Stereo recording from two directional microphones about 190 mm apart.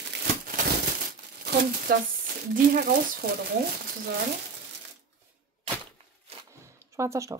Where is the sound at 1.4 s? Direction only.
55° right (ahead or behind).